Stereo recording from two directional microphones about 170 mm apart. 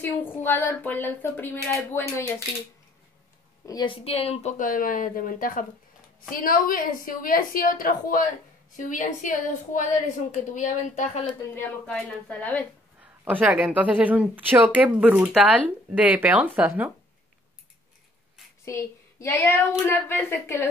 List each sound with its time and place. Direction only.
0.0 s speech: 15° left (ahead or behind)
3.6 s a woman's voice: 25° left (ahead or behind); by 11.2 s 45° left (ahead or behind)
11.5 s speech: 5° left (ahead or behind)
13.0 s a woman's voice: 10° right (ahead or behind)
18.7 s speech: 15° left (ahead or behind)